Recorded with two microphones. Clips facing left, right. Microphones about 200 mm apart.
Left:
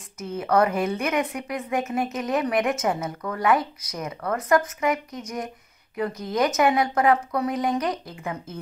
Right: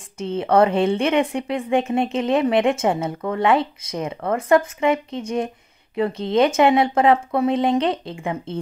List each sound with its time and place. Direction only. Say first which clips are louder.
0.2 s a woman's voice: right 5 dB; 30° right (ahead or behind)